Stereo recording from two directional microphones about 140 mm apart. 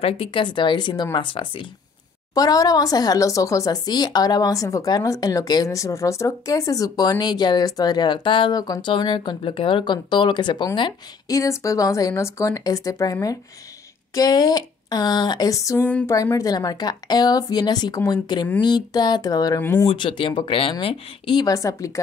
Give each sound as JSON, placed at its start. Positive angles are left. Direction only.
{"t": 0.0, "sound": "speech", "side_deg": 40}
{"t": 2.3, "sound": "speech", "side_deg": 25}
{"t": 15.8, "sound": "a sound", "side_deg": 10}
{"t": 16.1, "sound": "speech", "side_deg": 20}
{"t": 19.6, "sound": "a sound", "side_deg": 15}
{"t": 19.9, "sound": "speech", "side_deg": 40}